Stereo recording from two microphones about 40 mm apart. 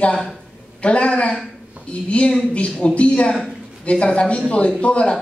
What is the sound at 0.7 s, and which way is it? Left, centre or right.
A man's voice, left.